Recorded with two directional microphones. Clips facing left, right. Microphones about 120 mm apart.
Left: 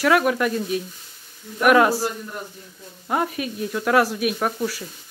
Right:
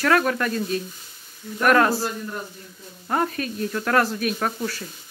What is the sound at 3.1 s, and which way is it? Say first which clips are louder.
Speech: even; 10° left (ahead or behind).